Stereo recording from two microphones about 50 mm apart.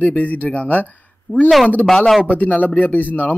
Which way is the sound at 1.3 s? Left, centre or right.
Left.